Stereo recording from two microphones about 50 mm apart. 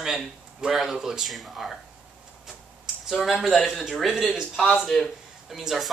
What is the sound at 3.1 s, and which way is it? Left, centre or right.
Speech, centre.